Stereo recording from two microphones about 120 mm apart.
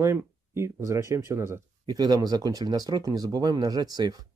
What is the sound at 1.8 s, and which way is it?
Speech, 35° right (ahead or behind).